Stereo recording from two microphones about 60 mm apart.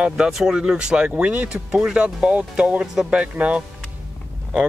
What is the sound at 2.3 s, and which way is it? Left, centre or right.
Speech, right.